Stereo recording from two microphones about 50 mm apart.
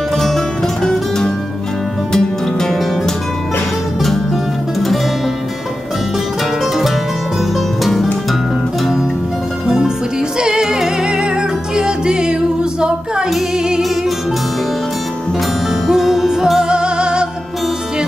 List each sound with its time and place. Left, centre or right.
2.1 s music: centre
7.8 s music: centre
10.4 s music: centre
15.9 s music: centre